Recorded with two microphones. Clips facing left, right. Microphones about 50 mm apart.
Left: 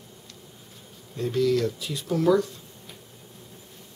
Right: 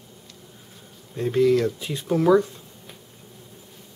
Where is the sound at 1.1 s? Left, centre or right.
Right.